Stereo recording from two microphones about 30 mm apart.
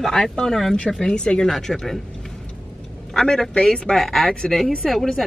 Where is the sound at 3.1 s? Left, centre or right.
Left.